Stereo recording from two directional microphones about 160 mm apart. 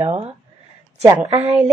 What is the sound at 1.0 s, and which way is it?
Speech, 20° right (ahead or behind).